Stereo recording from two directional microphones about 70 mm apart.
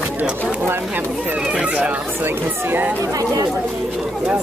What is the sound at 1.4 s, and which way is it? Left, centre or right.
Speech, centre.